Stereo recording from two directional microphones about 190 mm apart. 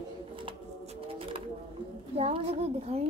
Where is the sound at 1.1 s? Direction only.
30° right (ahead or behind).